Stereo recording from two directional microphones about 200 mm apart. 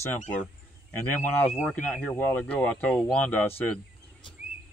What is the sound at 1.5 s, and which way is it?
Speech, 5° left (ahead or behind).